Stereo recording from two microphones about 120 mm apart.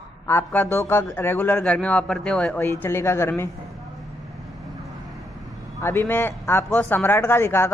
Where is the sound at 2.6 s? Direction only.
20° left (ahead or behind).